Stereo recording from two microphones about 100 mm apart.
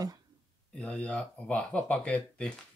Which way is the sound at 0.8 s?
10° left (ahead or behind).